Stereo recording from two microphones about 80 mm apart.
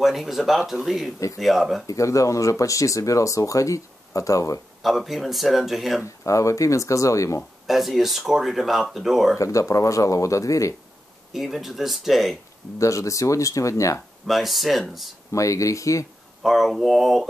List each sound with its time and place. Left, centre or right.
0.0 s speech: centre
1.9 s speech: left
4.8 s speech: centre
6.0 s speech: left
7.6 s speech: centre
9.4 s speech: left
11.3 s speech: centre
12.7 s speech: left
14.2 s speech: centre
15.3 s speech: left
16.4 s speech: centre